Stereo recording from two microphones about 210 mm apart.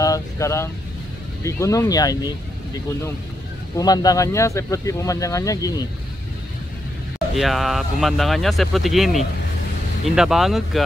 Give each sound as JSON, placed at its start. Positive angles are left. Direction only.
{"t": 0.0, "sound": "speech", "side_deg": 15}
{"t": 7.3, "sound": "speech", "side_deg": 0}